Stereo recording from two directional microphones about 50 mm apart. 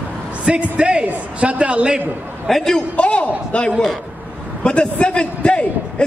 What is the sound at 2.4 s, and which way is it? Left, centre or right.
Speech, centre.